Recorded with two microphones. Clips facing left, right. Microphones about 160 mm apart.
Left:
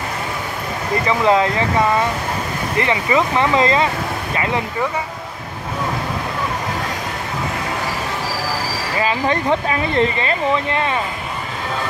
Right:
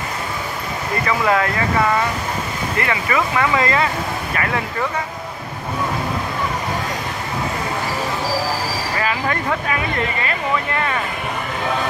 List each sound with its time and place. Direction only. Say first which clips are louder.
1.0 s speech: left 3 dB; 20° left (ahead or behind)
2.8 s speech: left 3 dB; 20° left (ahead or behind)
9.0 s speech: left 5 dB; 25° left (ahead or behind)